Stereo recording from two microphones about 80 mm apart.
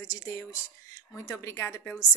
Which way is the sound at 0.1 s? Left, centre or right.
Left.